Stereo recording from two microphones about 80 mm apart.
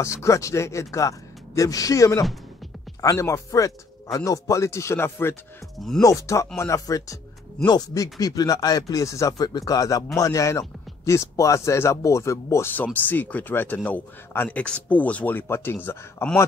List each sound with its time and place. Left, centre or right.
0.0 s a man's voice: left
5.8 s speech: centre
6.0 s a man's voice: left
7.6 s a man's voice: left
12.7 s speech: left